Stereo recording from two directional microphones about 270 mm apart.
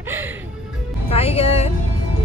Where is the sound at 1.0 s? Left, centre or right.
Left.